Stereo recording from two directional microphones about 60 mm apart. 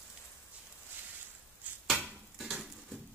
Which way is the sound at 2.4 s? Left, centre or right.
Centre.